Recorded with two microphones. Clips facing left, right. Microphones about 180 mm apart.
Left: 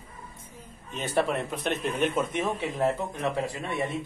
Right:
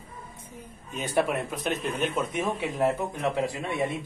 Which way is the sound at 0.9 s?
5° right (ahead or behind).